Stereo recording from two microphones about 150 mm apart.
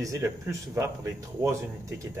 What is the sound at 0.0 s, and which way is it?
Speech, 20° right (ahead or behind).